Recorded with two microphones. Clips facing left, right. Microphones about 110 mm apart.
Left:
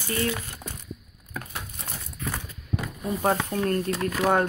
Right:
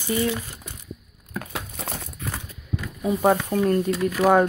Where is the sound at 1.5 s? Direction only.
90° right.